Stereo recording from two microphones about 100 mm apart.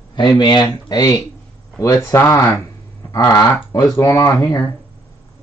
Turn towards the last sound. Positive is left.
turn(degrees=35)  # may be behind; listen again after turning